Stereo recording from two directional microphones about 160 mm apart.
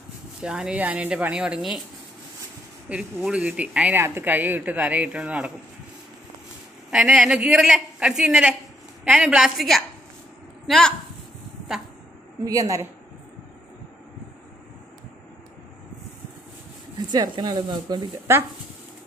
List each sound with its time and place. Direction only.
0.4 s speech: 5° right (ahead or behind)
2.9 s speech: 5° right (ahead or behind)
6.9 s a man's voice: 5° right (ahead or behind)
12.4 s speech: 20° right (ahead or behind)
17.1 s speech: 25° right (ahead or behind)